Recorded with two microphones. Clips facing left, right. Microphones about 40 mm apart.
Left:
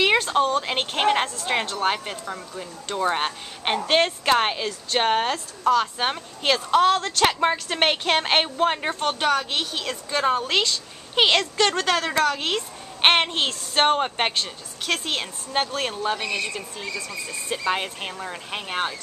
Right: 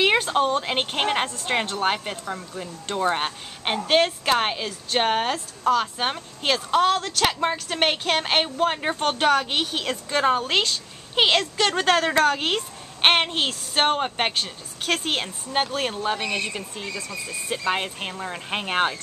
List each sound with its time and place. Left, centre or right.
0.3 s a woman's voice: centre
9.0 s speech: centre
11.7 s speech: right
13.0 s a woman's voice: centre
14.9 s speech: right
15.5 s a woman's voice: centre
16.3 s speech: right
17.1 s a woman's voice: centre
18.5 s speech: right